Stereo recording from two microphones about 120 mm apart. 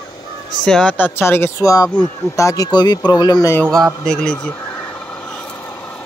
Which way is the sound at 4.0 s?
5° left (ahead or behind).